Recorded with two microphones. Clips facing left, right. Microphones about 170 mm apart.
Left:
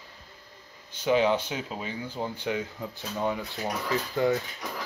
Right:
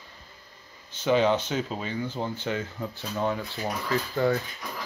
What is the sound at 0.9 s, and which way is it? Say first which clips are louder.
Speech: right 1 dB; 10° left (ahead or behind).